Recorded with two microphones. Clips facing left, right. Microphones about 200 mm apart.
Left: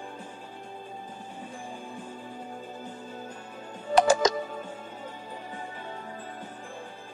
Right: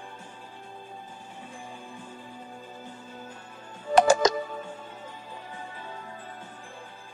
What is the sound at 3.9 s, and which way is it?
Music, 50° right (ahead or behind).